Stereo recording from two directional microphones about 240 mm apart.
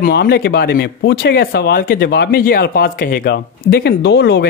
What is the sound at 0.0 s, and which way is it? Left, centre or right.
Speech, left.